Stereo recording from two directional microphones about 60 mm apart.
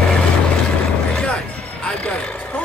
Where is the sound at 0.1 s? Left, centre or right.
Centre.